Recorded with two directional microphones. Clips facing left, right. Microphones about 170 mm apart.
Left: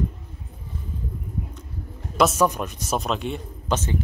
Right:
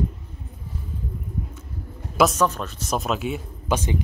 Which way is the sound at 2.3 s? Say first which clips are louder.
Left 1 dB; 15° left (ahead or behind).